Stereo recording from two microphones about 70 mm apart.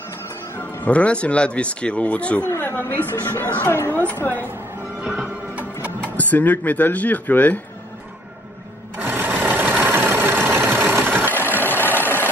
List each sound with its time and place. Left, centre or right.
0.6 s speech: left
2.6 s a woman's voice: left
4.2 s a woman's voice: left
5.0 s music: centre
5.9 s speech: left
8.9 s sewing machine: right
9.8 s engine: right
11.3 s engine: left